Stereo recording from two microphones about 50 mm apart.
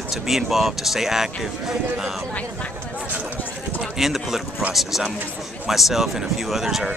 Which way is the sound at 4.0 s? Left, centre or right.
Centre.